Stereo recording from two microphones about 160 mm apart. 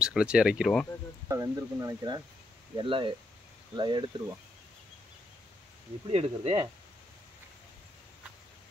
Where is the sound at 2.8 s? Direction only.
35° right (ahead or behind).